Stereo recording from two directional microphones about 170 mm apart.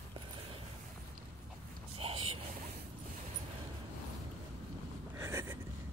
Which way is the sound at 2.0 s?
35° right (ahead or behind).